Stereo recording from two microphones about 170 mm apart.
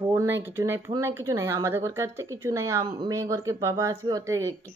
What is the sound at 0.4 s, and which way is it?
A woman's voice, 15° right (ahead or behind).